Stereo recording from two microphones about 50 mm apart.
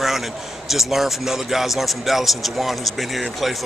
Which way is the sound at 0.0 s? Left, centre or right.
Centre.